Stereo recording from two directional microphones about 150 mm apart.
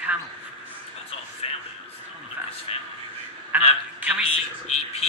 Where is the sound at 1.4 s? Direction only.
45° left (ahead or behind).